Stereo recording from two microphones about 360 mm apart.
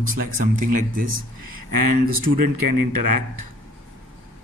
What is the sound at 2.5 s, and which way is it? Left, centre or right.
Speech, right.